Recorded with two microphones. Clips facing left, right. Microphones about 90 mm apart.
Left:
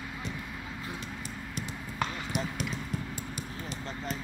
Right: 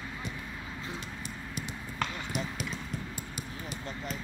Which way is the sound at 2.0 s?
Centre (ahead or behind).